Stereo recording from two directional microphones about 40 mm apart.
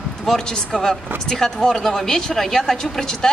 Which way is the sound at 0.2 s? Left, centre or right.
Centre.